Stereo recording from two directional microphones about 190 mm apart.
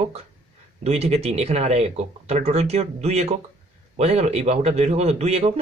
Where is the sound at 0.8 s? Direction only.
35° right (ahead or behind).